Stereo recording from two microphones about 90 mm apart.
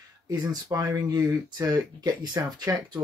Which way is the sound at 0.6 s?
40° right (ahead or behind).